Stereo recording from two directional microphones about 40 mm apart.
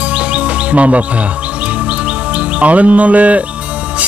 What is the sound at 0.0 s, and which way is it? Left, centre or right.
Chirp, right.